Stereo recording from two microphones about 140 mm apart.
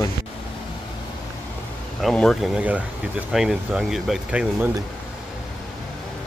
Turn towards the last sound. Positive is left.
turn(degrees=-10)  # may be behind; listen again after turning